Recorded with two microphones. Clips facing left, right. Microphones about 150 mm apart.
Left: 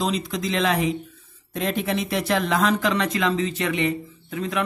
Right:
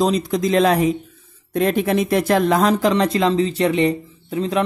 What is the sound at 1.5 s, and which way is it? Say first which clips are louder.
Speech: right 7 dB; 50° right (ahead or behind).